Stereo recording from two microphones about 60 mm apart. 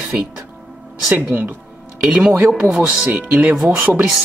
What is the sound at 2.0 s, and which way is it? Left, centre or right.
Speech, centre.